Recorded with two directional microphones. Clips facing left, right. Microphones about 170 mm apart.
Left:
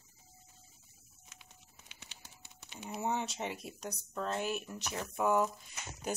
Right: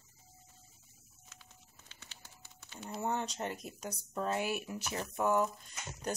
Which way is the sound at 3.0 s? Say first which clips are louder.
Even; 5° left (ahead or behind).